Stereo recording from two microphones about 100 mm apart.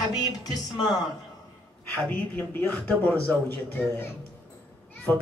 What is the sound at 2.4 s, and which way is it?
Speech, 20° left (ahead or behind).